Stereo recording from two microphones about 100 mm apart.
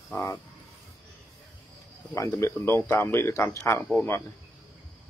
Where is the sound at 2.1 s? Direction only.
25° left (ahead or behind).